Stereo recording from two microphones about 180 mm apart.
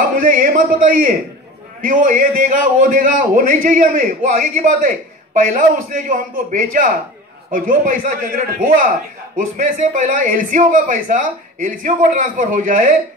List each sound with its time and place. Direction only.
0.1 s a man's voice: 50° right (ahead or behind)